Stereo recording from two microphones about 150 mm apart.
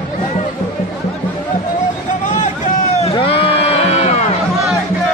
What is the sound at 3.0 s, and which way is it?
Music, 40° left (ahead or behind).